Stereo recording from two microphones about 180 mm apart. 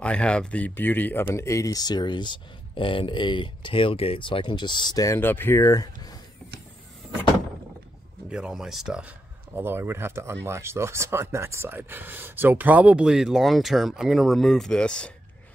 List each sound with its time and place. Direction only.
0.0 s speech: 5° left (ahead or behind)
8.3 s speech: 5° right (ahead or behind)